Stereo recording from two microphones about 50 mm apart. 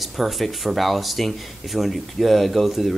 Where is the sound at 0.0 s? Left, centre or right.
Centre.